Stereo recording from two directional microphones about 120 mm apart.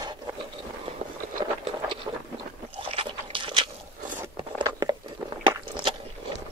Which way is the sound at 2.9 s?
45° right (ahead or behind).